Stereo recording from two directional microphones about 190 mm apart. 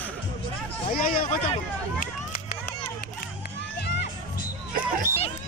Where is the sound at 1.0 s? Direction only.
50° left (ahead or behind).